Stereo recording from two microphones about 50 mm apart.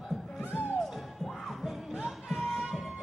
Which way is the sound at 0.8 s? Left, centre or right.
Centre.